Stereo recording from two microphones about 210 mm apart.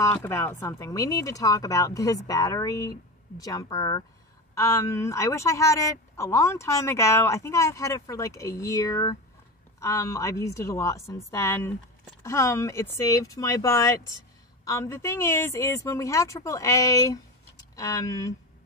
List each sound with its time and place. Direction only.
0.0 s speech: 10° left (ahead or behind)